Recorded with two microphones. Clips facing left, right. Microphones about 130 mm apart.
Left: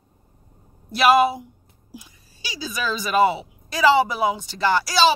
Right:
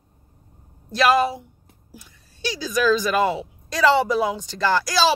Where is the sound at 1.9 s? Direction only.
10° left (ahead or behind).